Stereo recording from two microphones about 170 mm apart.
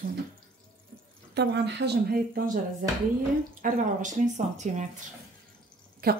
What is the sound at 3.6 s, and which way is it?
Speech, 50° right (ahead or behind).